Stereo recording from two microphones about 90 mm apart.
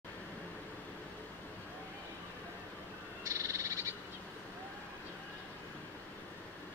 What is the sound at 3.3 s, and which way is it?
Frog, 35° right (ahead or behind).